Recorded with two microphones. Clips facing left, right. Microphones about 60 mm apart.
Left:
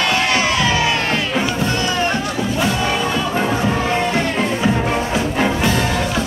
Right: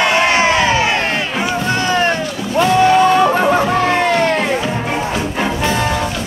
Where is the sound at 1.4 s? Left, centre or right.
Right.